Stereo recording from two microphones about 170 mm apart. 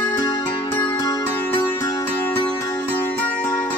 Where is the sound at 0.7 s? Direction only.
20° left (ahead or behind).